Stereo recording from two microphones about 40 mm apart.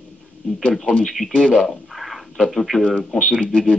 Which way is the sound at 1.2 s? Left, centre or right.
Centre.